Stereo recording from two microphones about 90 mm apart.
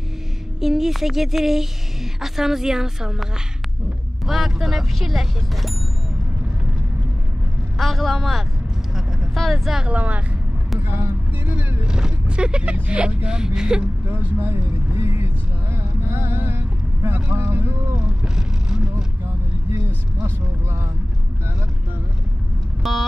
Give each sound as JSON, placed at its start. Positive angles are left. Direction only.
{"t": 0.6, "sound": "speech", "side_deg": -5}
{"t": 4.3, "sound": "speech", "side_deg": 0}
{"t": 7.7, "sound": "speech", "side_deg": 0}
{"t": 8.9, "sound": "vehicle", "side_deg": 0}
{"t": 9.8, "sound": "speech", "side_deg": -15}
{"t": 10.8, "sound": "a sound", "side_deg": -30}
{"t": 11.9, "sound": "speech", "side_deg": -10}
{"t": 14.4, "sound": "speech", "side_deg": -30}
{"t": 18.2, "sound": "vehicle", "side_deg": -5}
{"t": 22.8, "sound": "speech", "side_deg": 0}